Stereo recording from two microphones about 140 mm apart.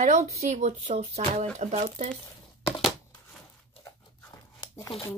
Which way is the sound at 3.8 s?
25° left (ahead or behind).